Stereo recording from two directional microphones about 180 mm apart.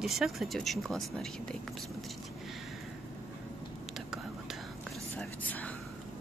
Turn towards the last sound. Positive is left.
turn(degrees=10)  # may be behind; listen again after turning